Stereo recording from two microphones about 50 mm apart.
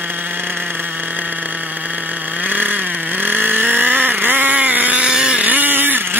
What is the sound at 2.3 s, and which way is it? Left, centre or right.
Vehicle, right.